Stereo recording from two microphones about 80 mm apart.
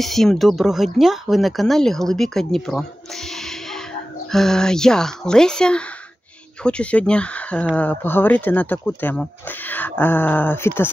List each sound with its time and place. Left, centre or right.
0.0 s speech: centre
4.3 s speech: centre; by 10.9 s left